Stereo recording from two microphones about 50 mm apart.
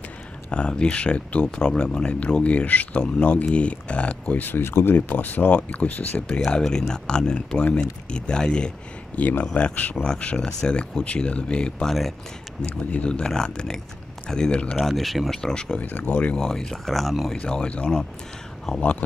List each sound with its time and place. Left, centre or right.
0.5 s speech: centre
4.4 s speech: left
4.9 s speech: left
6.2 s speech: centre
13.0 s speech: left
14.8 s speech: centre
15.8 s speech: left
16.3 s speech: centre
17.4 s speech: left